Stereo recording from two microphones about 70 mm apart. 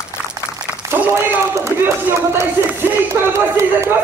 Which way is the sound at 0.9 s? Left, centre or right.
Right.